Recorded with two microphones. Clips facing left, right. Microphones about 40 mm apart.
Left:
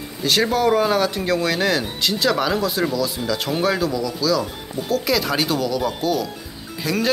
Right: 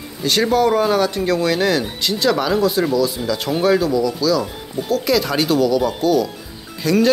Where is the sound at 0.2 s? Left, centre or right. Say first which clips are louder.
Right 2 dB; centre.